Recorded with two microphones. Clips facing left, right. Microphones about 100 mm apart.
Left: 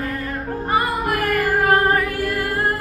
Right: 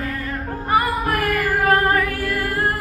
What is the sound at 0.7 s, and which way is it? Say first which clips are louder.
Music: right 1 dB; 20° left (ahead or behind).